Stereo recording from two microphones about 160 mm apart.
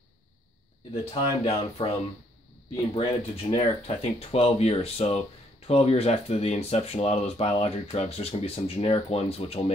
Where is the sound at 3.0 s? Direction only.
40° left (ahead or behind).